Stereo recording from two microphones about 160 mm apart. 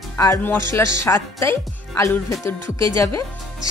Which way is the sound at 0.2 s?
15° left (ahead or behind).